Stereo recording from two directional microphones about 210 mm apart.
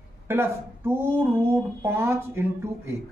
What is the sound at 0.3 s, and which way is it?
Speech, 10° right (ahead or behind).